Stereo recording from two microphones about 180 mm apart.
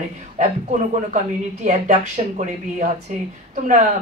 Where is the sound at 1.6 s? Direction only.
40° right (ahead or behind).